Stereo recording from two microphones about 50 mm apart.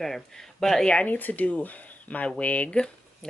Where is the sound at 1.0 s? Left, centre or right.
Left.